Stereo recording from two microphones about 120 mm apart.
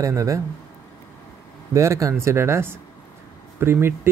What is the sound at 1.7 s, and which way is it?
Speech, 25° right (ahead or behind).